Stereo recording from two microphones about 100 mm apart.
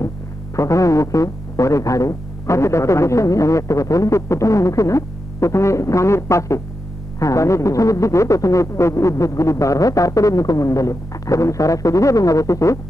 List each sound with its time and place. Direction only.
0.6 s speech: 30° left (ahead or behind)